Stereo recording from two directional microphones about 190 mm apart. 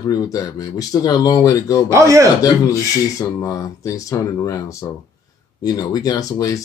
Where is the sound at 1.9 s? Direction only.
15° right (ahead or behind).